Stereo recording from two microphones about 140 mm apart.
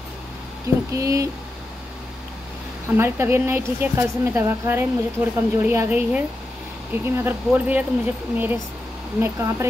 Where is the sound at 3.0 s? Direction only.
15° right (ahead or behind).